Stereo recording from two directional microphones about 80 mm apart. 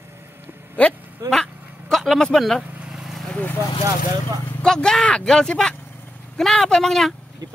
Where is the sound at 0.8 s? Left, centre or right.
Centre.